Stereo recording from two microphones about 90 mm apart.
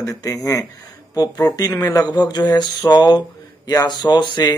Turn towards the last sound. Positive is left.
turn(degrees=55)  # may be behind; listen again after turning